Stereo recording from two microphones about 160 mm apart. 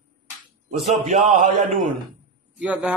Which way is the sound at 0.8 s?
45° right (ahead or behind).